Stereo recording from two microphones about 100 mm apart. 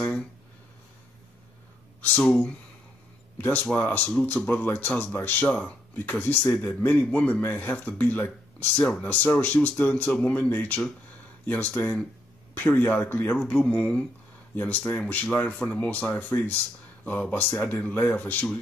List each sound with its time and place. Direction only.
2.0 s speech: 15° left (ahead or behind)